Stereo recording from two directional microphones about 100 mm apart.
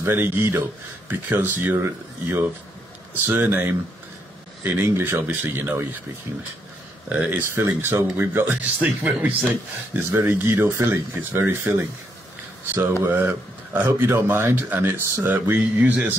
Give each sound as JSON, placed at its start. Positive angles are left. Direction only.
{"t": 0.0, "sound": "speech", "side_deg": -20}
{"t": 7.1, "sound": "speech", "side_deg": -15}
{"t": 13.0, "sound": "speech", "side_deg": -20}